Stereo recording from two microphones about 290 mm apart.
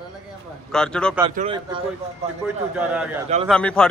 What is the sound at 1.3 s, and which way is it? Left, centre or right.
Speech, centre.